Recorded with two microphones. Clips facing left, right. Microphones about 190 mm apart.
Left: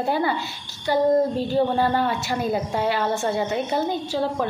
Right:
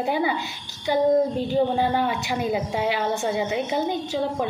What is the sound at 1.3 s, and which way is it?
A woman's voice, 15° right (ahead or behind).